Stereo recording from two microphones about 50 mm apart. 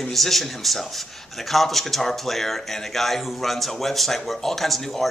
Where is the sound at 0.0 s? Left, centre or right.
Centre.